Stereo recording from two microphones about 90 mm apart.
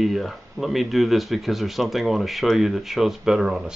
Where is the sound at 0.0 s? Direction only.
Centre (ahead or behind).